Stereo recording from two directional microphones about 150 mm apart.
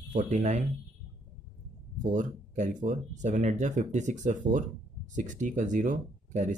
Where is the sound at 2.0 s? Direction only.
55° right (ahead or behind).